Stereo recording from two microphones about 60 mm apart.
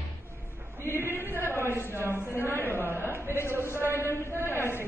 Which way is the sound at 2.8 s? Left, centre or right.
Right.